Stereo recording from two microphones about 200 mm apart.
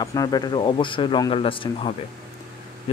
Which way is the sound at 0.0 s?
20° left (ahead or behind).